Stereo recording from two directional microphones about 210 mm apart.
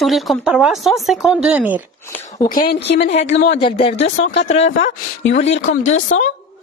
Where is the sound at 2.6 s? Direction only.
55° left (ahead or behind).